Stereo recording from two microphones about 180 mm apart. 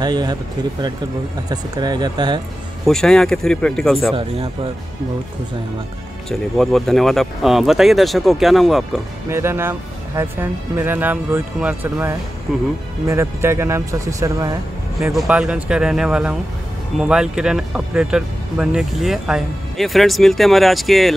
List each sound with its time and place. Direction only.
0.0 s speech: 25° right (ahead or behind)
1.5 s speech: 25° right (ahead or behind)
2.8 s speech: 5° left (ahead or behind)
4.1 s speech: 30° right (ahead or behind)
6.2 s speech: centre (ahead or behind)
9.3 s speech: 15° right (ahead or behind)
15.1 s speech: 5° right (ahead or behind)